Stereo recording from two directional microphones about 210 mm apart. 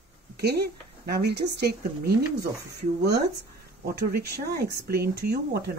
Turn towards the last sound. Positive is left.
turn(degrees=-50)  # may be behind; listen again after turning